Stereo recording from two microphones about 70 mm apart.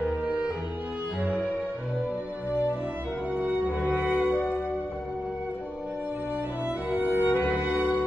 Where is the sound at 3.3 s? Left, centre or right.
Right.